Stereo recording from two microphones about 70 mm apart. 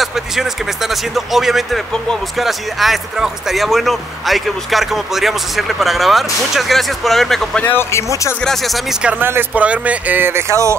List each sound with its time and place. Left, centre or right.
0.0 s speech: centre
7.7 s speech: left
9.2 s speech: right
9.5 s speech: centre
10.5 s speech: right